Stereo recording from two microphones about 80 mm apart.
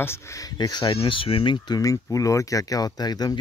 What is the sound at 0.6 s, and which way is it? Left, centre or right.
Speech, left.